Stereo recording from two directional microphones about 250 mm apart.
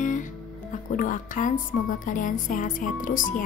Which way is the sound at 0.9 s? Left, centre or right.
Left.